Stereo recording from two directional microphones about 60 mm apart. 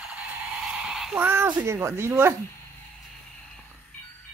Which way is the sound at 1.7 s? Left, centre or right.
Right.